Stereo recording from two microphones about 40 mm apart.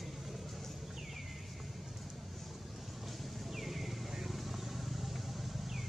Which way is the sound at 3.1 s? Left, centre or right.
Centre.